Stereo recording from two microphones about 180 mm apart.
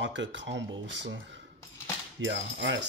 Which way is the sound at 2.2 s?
85° right.